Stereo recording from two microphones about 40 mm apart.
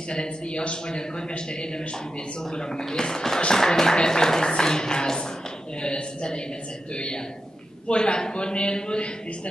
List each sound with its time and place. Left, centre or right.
0.1 s a man's voice: left
2.9 s a man's voice: centre
7.9 s a man's voice: left